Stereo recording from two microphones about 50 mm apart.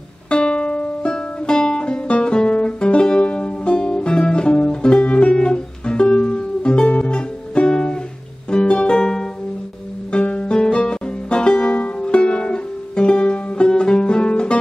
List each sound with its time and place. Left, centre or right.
0.3 s music: centre